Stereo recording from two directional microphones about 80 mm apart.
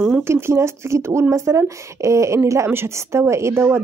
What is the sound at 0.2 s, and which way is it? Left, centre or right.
Speech, right.